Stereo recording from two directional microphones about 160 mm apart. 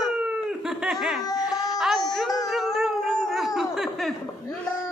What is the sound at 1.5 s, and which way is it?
Music, 25° left (ahead or behind).